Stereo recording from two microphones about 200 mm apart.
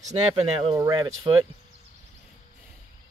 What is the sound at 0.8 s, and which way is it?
Speech, 15° right (ahead or behind).